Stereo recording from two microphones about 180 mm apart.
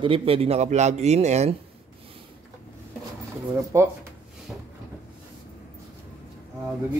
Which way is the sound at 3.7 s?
15° right (ahead or behind).